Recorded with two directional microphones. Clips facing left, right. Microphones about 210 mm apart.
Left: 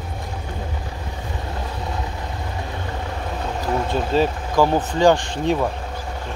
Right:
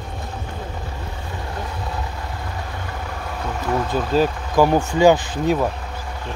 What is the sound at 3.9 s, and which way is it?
Speech, 5° right (ahead or behind).